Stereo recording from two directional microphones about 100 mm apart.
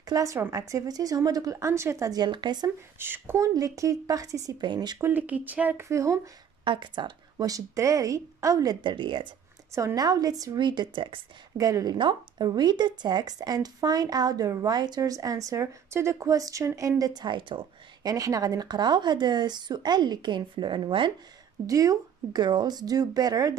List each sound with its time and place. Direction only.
0.0 s speech: 35° right (ahead or behind)
3.0 s speech: 20° right (ahead or behind)
3.5 s speech: 35° right (ahead or behind)
5.0 s speech: 15° right (ahead or behind)
5.9 s speech: 30° right (ahead or behind)
6.6 s speech: 55° right (ahead or behind); by 8.7 s 35° right (ahead or behind)
8.8 s speech: 55° right (ahead or behind)
9.8 s speech: 35° right (ahead or behind); by 11.1 s 50° right (ahead or behind)
11.5 s speech: 35° right (ahead or behind); by 17.6 s 55° right (ahead or behind)
18.0 s speech: 35° right (ahead or behind); by 21.1 s 55° right (ahead or behind)
21.6 s speech: 35° right (ahead or behind)